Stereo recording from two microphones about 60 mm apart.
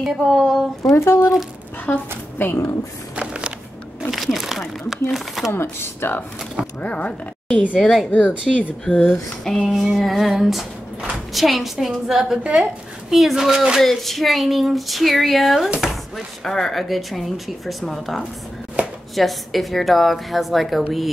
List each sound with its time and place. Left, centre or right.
0.0 s a sound: centre
0.9 s speech: left
3.2 s a sound: centre
4.1 s speech: centre
5.5 s speech: left
6.8 s a woman's voice: left
7.8 s speech: centre
8.1 s speech: left
8.8 s a sound: centre
9.9 s speech: centre
15.8 s chopping: centre
16.4 s speech: centre